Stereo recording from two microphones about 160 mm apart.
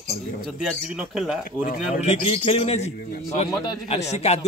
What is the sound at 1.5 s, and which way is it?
Speech, 60° left (ahead or behind).